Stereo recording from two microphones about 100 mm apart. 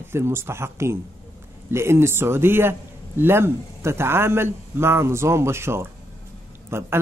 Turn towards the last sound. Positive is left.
turn(degrees=-25)  # may be behind; listen again after turning